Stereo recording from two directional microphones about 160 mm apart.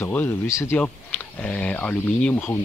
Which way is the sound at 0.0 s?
15° left (ahead or behind).